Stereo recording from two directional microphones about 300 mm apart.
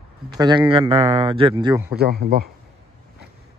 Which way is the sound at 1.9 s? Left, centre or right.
Right.